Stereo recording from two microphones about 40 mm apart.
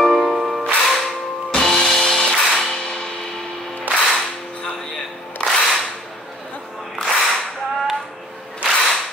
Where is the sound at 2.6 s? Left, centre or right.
Centre.